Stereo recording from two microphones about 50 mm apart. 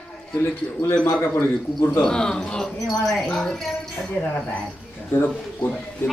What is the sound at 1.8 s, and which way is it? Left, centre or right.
Speech, centre.